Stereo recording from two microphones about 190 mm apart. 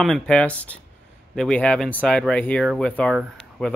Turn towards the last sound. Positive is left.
turn(degrees=5)  # may be behind; listen again after turning